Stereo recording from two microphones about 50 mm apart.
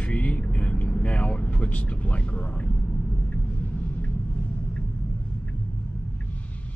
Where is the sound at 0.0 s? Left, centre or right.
Left.